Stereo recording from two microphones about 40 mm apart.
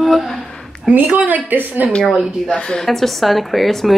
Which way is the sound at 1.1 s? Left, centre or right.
Right.